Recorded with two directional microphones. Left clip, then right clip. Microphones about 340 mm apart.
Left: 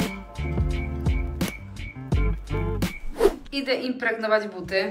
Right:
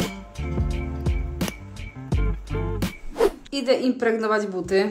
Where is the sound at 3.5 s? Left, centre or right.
Right.